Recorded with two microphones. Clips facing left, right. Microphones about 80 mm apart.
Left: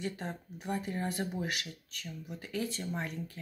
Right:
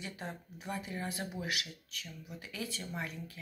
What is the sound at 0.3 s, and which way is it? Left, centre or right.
Speech, left.